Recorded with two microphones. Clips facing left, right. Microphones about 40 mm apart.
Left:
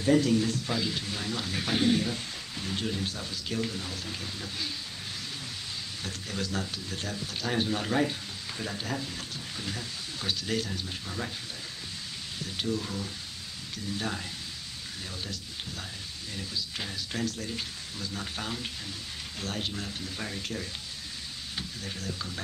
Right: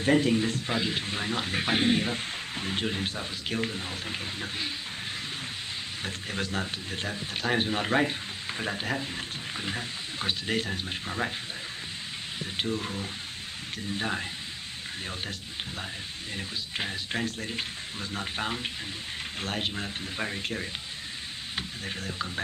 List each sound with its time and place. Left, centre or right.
0.0 s a man's voice: right
6.0 s a man's voice: right
12.5 s a man's voice: right
16.3 s a man's voice: right